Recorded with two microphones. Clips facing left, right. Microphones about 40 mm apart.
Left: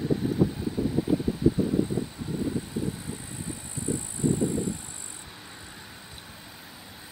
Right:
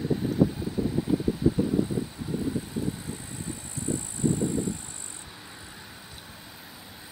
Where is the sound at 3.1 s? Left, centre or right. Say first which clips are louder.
Even; centre.